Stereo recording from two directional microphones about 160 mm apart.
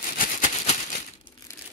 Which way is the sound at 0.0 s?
55° left (ahead or behind).